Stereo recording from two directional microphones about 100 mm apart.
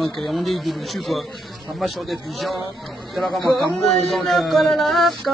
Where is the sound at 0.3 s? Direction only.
Centre (ahead or behind).